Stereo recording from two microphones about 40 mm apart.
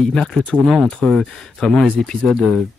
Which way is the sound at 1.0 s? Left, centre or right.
Left.